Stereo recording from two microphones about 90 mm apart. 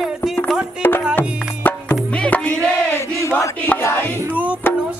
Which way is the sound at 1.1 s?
20° left (ahead or behind).